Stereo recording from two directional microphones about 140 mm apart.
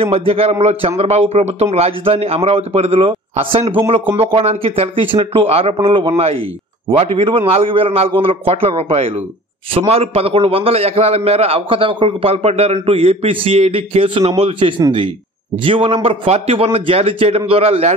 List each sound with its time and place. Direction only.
0.0 s a man's voice: 45° right (ahead or behind)